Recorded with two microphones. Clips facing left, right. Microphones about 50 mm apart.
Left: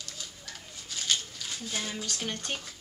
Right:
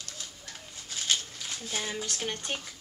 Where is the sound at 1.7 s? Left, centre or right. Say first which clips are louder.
Right 2 dB; centre.